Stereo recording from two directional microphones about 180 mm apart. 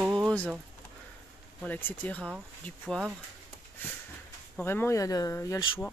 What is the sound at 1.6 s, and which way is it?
Speech, 10° left (ahead or behind).